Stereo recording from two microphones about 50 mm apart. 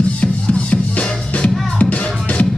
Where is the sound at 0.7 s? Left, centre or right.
Left.